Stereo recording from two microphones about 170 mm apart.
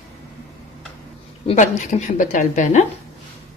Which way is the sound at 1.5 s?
45° left (ahead or behind).